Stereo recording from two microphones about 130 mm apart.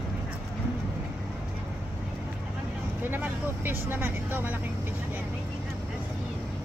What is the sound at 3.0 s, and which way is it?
Speech, 15° right (ahead or behind).